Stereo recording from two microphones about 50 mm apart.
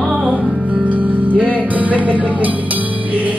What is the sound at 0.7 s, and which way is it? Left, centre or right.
Music, right.